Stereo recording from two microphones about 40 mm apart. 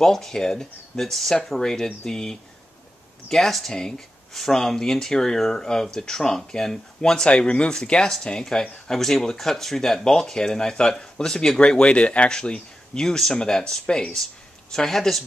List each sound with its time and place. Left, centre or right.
0.0 s speech: centre
7.2 s speech: left
11.8 s speech: left; by 15.2 s centre